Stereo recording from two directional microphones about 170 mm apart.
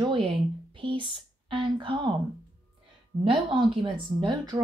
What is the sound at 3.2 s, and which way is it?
Speech, 30° right (ahead or behind).